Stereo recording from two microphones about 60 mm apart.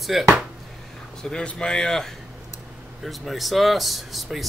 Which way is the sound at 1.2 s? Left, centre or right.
Centre.